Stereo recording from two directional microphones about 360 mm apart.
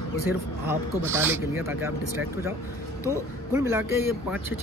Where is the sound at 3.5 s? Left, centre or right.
Centre.